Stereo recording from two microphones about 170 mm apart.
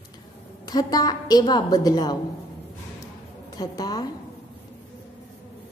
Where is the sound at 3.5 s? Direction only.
25° left (ahead or behind).